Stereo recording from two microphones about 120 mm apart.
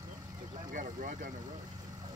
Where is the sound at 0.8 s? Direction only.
90° right.